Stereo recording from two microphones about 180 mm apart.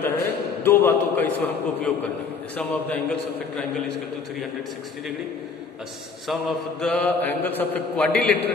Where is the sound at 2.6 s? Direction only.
5° left (ahead or behind).